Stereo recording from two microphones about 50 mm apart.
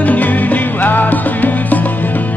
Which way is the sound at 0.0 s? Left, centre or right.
Left.